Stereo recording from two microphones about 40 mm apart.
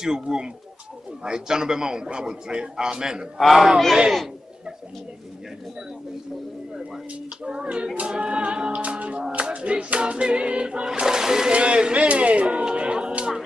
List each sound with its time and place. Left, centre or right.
0.0 s a man's voice: centre
3.3 s speech: centre
7.4 s speech: right
8.9 s music: right
9.3 s a sound: right
10.9 s speech: centre
11.5 s speech: right
12.7 s music: right